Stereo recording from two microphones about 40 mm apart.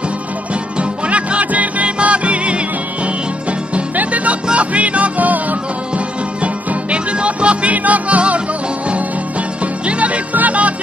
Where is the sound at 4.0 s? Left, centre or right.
Right.